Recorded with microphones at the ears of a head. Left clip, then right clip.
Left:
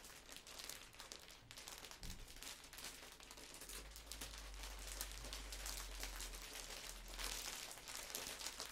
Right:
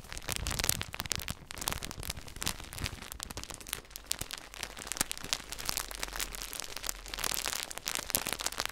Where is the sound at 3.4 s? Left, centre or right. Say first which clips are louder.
Right 11 dB; right.